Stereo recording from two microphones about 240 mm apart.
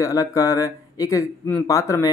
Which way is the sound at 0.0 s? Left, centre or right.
Centre.